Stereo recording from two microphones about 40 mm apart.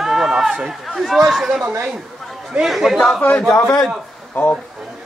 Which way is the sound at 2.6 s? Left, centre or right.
Centre.